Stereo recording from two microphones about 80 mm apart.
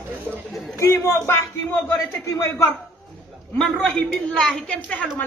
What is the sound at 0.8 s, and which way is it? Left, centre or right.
Speech, left.